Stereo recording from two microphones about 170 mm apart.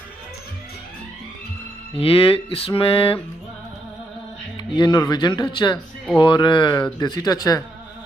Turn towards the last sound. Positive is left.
turn(degrees=20)  # may be behind; listen again after turning